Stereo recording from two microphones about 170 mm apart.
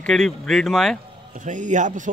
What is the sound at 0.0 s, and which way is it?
Speech, 5° left (ahead or behind).